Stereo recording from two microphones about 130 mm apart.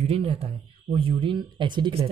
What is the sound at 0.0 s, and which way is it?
Speech, 45° right (ahead or behind).